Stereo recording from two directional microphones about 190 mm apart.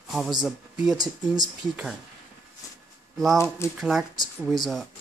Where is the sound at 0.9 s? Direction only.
20° right (ahead or behind).